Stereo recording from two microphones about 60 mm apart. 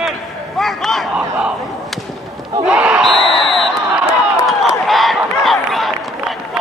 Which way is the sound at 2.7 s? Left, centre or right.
Centre.